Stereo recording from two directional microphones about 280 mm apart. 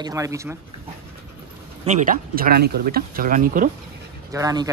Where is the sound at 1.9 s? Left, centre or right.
Right.